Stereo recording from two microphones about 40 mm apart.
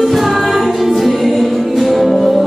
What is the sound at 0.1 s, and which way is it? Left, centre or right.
Music, centre.